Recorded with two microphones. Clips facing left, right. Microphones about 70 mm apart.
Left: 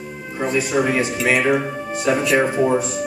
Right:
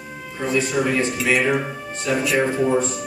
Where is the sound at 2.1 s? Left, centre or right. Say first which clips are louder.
Left 3 dB; left.